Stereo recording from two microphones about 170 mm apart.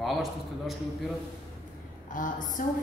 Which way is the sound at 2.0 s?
50° left (ahead or behind).